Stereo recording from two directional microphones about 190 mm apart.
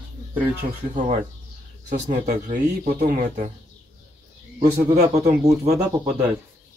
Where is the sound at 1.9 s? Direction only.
40° right (ahead or behind).